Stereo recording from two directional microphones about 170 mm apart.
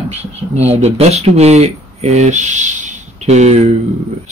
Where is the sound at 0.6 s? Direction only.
40° right (ahead or behind).